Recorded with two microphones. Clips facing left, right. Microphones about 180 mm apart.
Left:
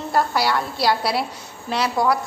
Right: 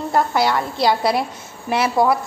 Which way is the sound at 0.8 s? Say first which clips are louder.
Right 5 dB; 20° right (ahead or behind).